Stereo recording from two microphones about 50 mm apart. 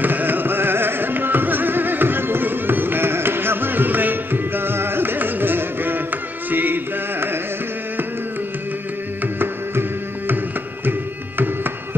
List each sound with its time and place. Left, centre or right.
0.0 s music: right
9.4 s music: right